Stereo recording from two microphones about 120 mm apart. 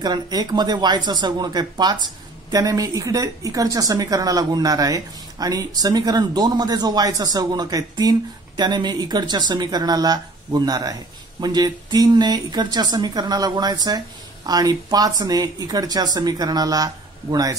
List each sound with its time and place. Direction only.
0.0 s a woman's voice: 35° right (ahead or behind)